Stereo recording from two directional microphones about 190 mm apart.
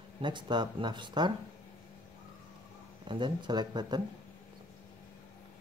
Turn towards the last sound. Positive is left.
turn(degrees=-20)  # may be behind; listen again after turning